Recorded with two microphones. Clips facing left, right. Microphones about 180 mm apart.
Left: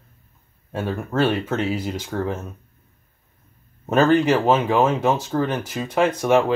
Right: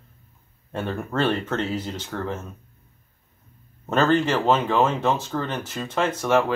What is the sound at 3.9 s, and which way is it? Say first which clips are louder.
Speech: left 4 dB; 10° left (ahead or behind).